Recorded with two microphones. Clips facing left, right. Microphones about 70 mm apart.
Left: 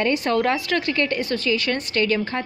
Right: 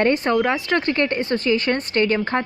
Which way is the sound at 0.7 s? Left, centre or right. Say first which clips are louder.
Right 2 dB; right.